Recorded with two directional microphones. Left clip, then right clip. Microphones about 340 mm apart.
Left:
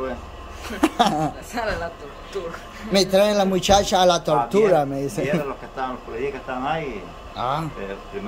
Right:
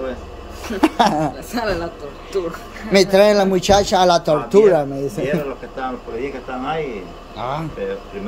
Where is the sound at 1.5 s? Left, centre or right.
Right.